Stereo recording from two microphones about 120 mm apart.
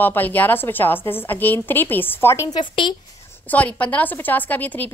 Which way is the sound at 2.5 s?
40° left (ahead or behind).